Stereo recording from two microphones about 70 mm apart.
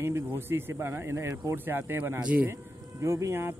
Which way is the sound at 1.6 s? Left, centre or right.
Right.